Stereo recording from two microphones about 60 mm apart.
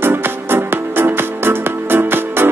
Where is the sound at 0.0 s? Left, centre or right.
Right.